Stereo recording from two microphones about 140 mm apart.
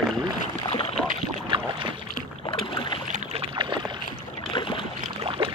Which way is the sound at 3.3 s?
35° right (ahead or behind).